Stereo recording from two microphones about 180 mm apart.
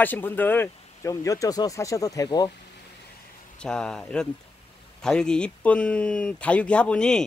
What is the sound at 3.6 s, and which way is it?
Speech, 5° left (ahead or behind).